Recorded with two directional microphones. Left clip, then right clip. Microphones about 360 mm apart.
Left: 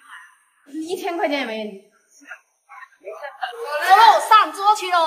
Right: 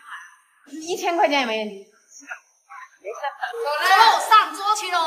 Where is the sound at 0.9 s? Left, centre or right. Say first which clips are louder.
Right 3 dB; centre.